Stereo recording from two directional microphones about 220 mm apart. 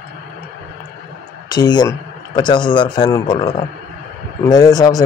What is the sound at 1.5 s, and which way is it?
Speech, 20° left (ahead or behind).